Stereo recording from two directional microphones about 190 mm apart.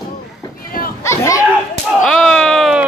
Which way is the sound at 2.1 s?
5° left (ahead or behind).